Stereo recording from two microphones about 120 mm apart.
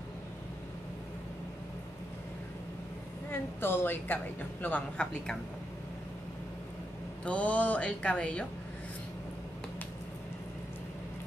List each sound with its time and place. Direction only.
3.3 s a woman's voice: 20° left (ahead or behind)
7.2 s a woman's voice: 10° left (ahead or behind)